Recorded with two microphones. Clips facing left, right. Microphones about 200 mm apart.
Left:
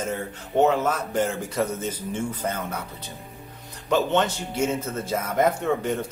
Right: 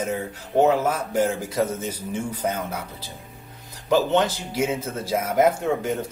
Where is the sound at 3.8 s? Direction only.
5° right (ahead or behind).